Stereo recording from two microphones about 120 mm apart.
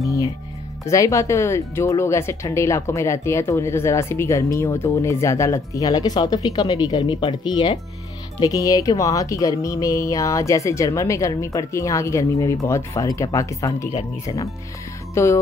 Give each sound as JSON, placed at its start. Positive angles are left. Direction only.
{"t": 0.0, "sound": "music", "side_deg": 25}
{"t": 0.8, "sound": "speech", "side_deg": 25}
{"t": 8.4, "sound": "speech", "side_deg": 30}